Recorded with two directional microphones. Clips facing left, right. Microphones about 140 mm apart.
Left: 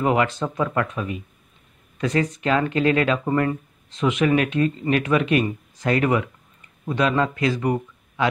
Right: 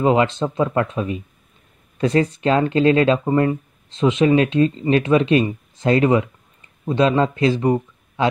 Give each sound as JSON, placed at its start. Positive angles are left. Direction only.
{"t": 0.0, "sound": "speech", "side_deg": -25}